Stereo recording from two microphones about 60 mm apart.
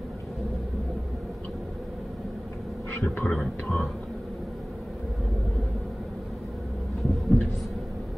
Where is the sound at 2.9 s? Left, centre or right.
Left.